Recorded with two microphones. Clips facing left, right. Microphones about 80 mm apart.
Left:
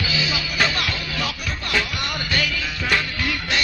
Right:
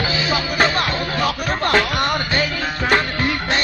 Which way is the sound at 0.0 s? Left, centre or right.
Right.